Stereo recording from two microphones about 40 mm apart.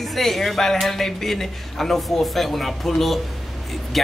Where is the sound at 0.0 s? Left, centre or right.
Centre.